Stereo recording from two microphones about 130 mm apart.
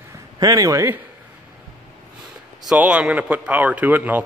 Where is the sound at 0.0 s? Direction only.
25° right (ahead or behind).